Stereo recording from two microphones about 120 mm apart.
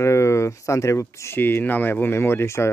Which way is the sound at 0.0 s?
25° left (ahead or behind).